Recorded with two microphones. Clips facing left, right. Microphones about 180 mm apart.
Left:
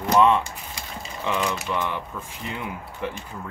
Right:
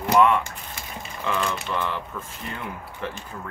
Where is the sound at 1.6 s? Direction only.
15° left (ahead or behind).